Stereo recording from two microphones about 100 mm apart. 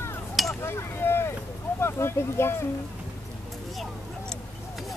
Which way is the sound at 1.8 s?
25° left (ahead or behind).